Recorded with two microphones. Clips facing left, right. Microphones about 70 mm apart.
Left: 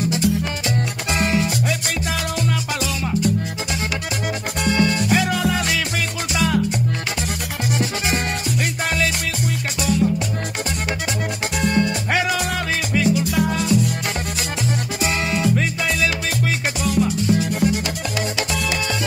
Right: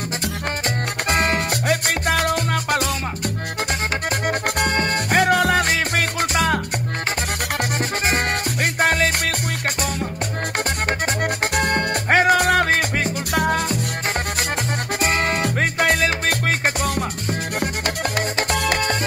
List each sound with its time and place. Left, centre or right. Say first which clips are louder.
1.1 s salsa music: left 1 dB; right
4.6 s music: left 1 dB; right
8.8 s music: right 5 dB; right
11.5 s music: left 4 dB; right
15.0 s music: right 3 dB; right